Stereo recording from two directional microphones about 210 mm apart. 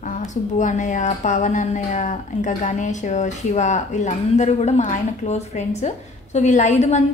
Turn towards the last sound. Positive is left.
turn(degrees=35)  # may be behind; listen again after turning